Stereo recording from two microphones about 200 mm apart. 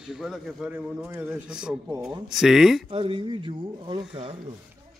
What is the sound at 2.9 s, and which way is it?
Speech, 25° right (ahead or behind).